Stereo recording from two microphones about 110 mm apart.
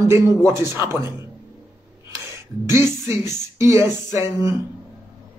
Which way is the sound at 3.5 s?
20° right (ahead or behind).